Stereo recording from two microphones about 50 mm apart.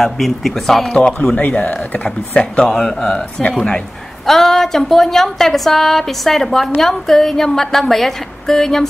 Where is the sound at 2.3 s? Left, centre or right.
Centre.